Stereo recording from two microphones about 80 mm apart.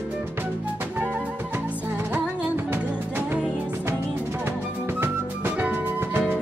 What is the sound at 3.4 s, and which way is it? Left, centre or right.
Music, centre.